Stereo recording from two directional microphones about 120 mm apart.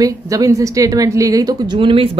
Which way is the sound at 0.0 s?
30° right (ahead or behind).